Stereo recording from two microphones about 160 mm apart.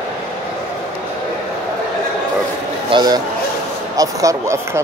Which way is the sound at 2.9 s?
25° right (ahead or behind).